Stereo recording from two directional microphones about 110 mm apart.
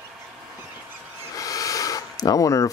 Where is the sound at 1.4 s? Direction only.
30° left (ahead or behind).